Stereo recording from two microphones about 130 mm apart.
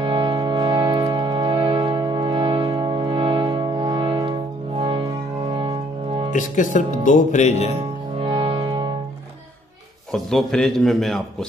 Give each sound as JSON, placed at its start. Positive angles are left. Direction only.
{"t": 0.0, "sound": "music", "side_deg": -40}
{"t": 6.3, "sound": "speech", "side_deg": 75}
{"t": 7.7, "sound": "music", "side_deg": -45}
{"t": 10.1, "sound": "a man's voice", "side_deg": 5}